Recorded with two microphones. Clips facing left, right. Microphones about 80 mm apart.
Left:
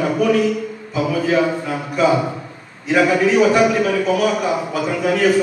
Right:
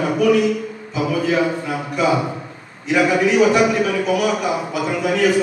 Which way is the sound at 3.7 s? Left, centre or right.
Left.